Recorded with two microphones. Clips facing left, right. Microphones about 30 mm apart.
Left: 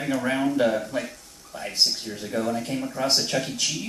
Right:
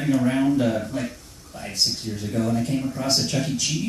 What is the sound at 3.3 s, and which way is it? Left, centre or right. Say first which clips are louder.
Speech: even; centre.